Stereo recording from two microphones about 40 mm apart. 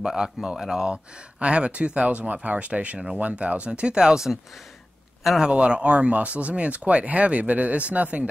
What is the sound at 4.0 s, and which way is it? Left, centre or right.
A man's voice, centre.